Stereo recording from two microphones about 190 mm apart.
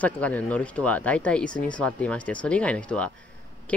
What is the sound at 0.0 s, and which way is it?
Speech, 10° left (ahead or behind).